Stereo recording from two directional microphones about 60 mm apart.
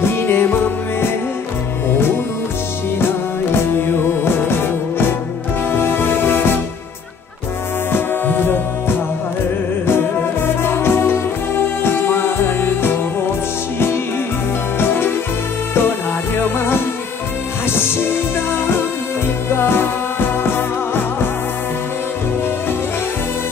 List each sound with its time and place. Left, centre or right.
0.0 s music: left
1.9 s music: left
7.9 s music: left
14.8 s music: left
16.3 s music: left